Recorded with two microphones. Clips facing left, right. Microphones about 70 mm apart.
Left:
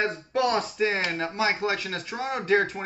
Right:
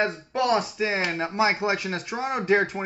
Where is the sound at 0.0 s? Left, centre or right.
Centre.